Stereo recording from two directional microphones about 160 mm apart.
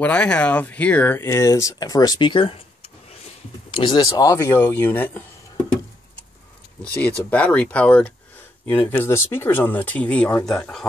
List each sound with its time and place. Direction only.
0.0 s speech: 5° left (ahead or behind)
7.0 s speech: 10° left (ahead or behind)